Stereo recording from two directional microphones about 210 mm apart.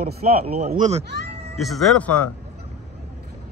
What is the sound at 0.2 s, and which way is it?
Speech, 40° right (ahead or behind).